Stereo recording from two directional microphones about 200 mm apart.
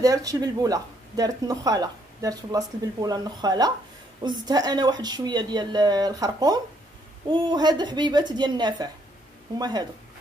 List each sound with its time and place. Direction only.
0.0 s speech: 15° right (ahead or behind)